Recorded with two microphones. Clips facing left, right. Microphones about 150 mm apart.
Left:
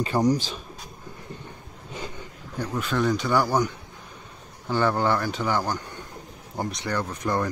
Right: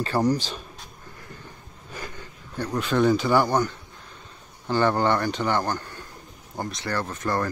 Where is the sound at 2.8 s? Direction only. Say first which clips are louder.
Right 4 dB; centre (ahead or behind).